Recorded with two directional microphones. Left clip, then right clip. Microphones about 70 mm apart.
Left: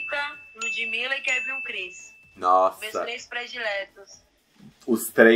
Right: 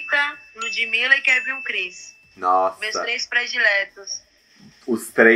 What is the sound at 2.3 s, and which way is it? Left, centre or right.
Speech, left.